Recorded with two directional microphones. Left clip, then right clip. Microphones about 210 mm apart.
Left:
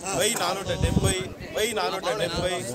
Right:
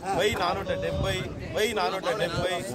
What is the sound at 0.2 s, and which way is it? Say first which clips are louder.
A man's voice: left 1 dB; 5° right (ahead or behind).